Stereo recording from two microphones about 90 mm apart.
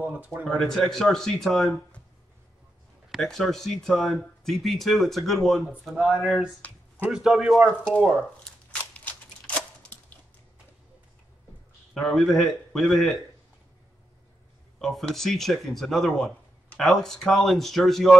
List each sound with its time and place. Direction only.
0.5 s speech: 5° left (ahead or behind)
3.1 s speech: 5° left (ahead or behind)
8.9 s a sound: 15° left (ahead or behind)
11.9 s speech: 5° left (ahead or behind)
14.8 s speech: 5° left (ahead or behind)